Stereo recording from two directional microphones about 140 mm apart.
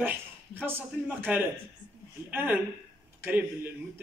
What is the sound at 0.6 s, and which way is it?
A man's voice, 15° right (ahead or behind).